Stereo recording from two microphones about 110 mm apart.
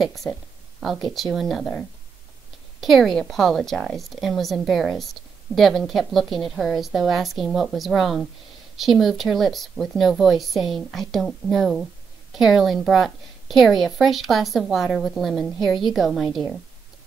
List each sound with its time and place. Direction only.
0.2 s speech: 20° left (ahead or behind)
1.0 s a woman's voice: centre (ahead or behind)